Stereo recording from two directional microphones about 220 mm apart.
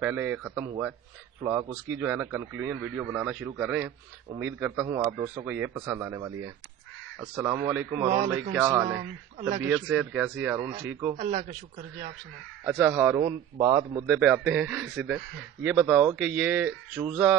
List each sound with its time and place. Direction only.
0.0 s a man's voice: 10° right (ahead or behind)
11.1 s speech: 30° right (ahead or behind)
12.6 s a man's voice: 10° right (ahead or behind)